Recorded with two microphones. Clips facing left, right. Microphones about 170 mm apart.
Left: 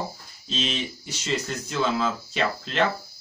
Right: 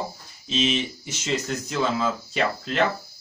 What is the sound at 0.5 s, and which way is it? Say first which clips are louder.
Speech: right 5 dB; 10° right (ahead or behind).